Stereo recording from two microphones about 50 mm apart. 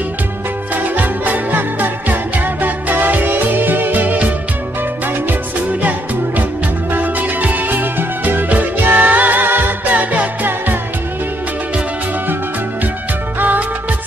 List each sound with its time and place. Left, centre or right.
0.7 s music: right
5.8 s music: right
13.4 s music: right